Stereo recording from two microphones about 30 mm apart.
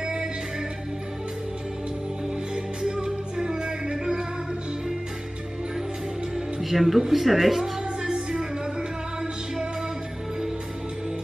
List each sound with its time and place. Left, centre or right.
0.0 s music: right
2.5 s music: centre
6.3 s music: centre
7.1 s speech: centre